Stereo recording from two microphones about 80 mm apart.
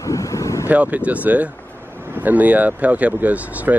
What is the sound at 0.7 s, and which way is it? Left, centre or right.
Speech, centre.